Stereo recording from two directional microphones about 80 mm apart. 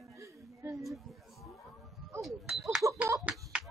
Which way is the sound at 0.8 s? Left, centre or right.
Centre.